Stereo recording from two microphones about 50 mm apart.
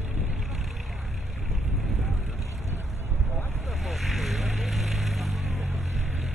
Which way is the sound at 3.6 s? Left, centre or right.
Centre.